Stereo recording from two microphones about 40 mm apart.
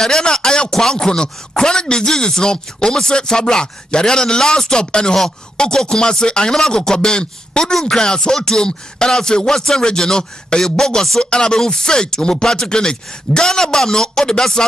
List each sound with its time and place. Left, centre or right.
0.0 s a man's voice: centre